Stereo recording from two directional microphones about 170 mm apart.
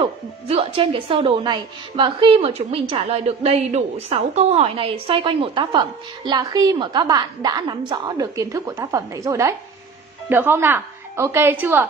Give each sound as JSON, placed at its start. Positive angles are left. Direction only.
{"t": 0.0, "sound": "a woman's voice", "side_deg": -30}